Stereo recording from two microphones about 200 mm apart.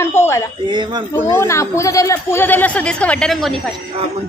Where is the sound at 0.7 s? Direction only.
20° right (ahead or behind).